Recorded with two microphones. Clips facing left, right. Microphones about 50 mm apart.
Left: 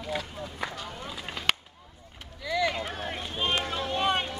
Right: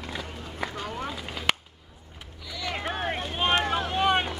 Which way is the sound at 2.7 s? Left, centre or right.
Right.